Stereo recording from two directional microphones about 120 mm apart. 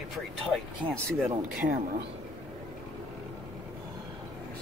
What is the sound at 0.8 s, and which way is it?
Speech, 45° right (ahead or behind).